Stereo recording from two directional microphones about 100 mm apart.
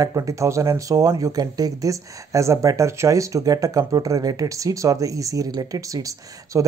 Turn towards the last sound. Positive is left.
turn(degrees=-35)  # may be behind; listen again after turning